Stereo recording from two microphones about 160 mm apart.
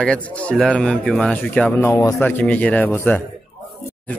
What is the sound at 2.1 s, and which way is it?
A man's voice, 10° left (ahead or behind).